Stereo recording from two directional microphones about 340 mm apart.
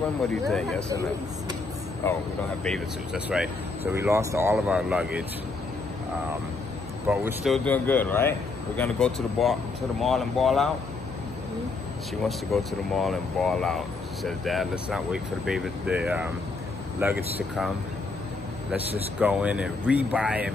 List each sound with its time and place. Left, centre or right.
0.3 s speech: centre
2.6 s speech: centre
7.1 s speech: centre
12.5 s speech: centre
18.7 s speech: centre